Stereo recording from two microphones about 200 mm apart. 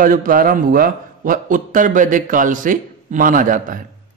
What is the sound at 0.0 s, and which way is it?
A man's voice, 45° right (ahead or behind).